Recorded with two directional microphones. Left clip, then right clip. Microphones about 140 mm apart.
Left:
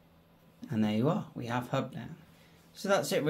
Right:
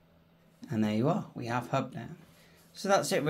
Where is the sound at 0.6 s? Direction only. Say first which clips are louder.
Even; 20° right (ahead or behind).